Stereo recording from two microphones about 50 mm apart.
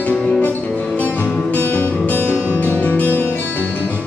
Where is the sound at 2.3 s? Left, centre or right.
Right.